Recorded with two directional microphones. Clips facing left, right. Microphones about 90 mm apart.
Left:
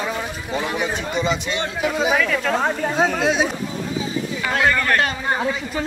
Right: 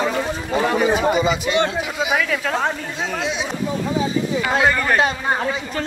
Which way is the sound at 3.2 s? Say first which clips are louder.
Left 5 dB; 45° left (ahead or behind).